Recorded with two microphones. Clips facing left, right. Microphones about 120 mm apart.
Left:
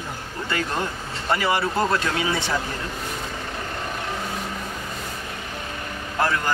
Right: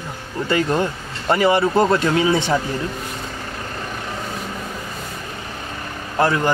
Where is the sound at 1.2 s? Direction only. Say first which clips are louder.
Right 6 dB; 25° right (ahead or behind).